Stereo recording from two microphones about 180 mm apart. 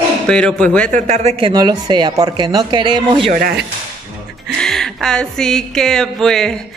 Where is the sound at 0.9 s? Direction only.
40° right (ahead or behind); by 3.1 s 25° right (ahead or behind).